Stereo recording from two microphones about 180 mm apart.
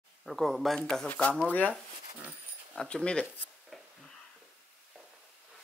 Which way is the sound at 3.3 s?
10° right (ahead or behind).